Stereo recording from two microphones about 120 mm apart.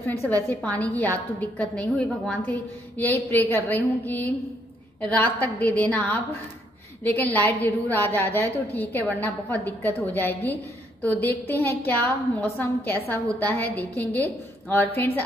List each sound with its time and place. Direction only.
0.3 s a woman's voice: 15° left (ahead or behind)